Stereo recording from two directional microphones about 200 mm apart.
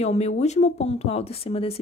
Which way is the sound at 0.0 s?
35° left (ahead or behind).